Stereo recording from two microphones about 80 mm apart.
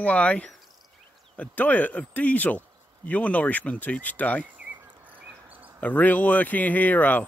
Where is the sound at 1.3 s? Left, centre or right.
Centre.